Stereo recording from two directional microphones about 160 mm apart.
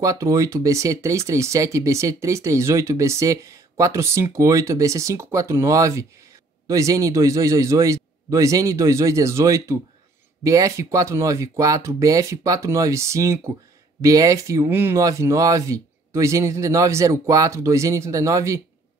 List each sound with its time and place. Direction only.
0.0 s speech: 20° right (ahead or behind)